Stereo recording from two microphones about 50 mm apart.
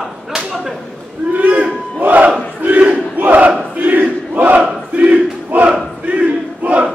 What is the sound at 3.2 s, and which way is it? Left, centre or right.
Battle cry, right.